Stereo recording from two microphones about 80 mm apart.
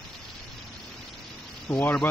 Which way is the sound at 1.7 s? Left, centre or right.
Left.